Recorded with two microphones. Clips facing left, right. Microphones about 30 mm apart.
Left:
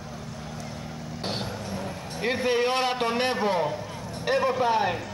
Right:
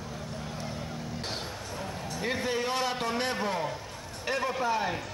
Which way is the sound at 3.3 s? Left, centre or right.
Left.